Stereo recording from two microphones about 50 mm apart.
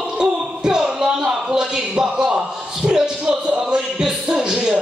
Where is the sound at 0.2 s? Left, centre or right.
Centre.